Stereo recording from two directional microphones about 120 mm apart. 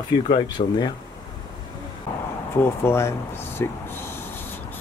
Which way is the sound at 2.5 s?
20° left (ahead or behind).